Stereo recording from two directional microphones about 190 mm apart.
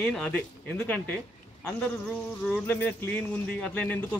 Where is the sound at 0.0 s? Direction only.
5° left (ahead or behind).